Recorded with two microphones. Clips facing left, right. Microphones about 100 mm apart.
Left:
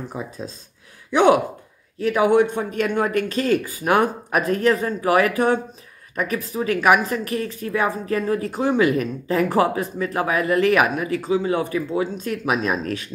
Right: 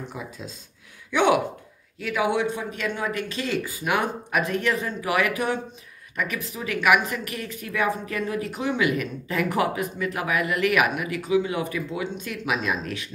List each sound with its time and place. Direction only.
0.2 s a woman's voice: 30° left (ahead or behind)